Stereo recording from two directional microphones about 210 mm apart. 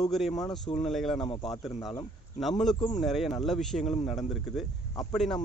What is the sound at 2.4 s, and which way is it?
Speech, centre (ahead or behind).